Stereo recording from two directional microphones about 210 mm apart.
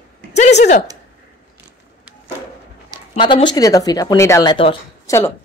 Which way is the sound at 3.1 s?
20° left (ahead or behind).